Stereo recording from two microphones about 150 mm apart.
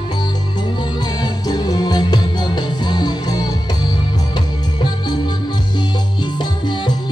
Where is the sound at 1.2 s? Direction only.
30° left (ahead or behind).